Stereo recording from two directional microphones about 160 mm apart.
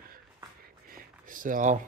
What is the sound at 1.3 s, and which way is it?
Speech, 60° right (ahead or behind).